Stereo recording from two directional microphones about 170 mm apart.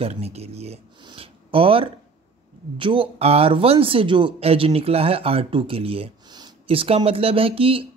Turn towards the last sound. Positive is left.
turn(degrees=-35)  # may be behind; listen again after turning